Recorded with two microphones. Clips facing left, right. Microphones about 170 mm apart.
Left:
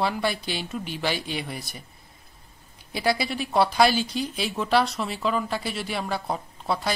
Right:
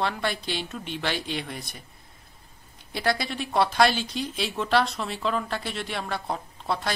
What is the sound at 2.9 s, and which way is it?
A woman's voice, 5° left (ahead or behind).